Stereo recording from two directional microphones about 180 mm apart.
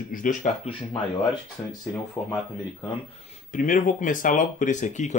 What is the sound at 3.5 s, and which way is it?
Speech, 45° left (ahead or behind).